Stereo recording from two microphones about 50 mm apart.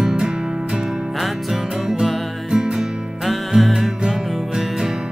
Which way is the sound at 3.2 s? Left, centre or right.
Centre.